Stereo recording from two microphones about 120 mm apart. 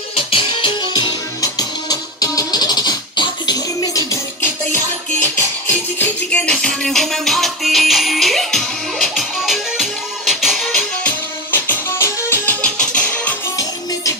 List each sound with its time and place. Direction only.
0.3 s music: 45° left (ahead or behind); by 4.5 s 25° left (ahead or behind)
5.7 s music: 15° left (ahead or behind)
11.5 s music: 20° left (ahead or behind)
12.6 s music: 10° left (ahead or behind)